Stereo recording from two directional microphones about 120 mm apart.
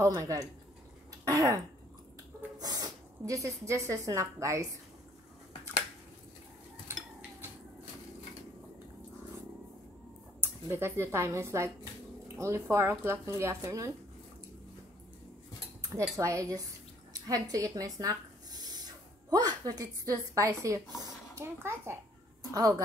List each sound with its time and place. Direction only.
0.1 s speech: 30° right (ahead or behind)
1.2 s throat clearing: 25° right (ahead or behind)
2.6 s speech: 30° right (ahead or behind)
10.4 s speech: 20° right (ahead or behind)
15.9 s speech: 25° right (ahead or behind)